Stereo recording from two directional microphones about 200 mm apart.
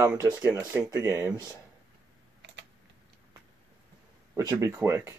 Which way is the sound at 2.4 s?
60° right (ahead or behind).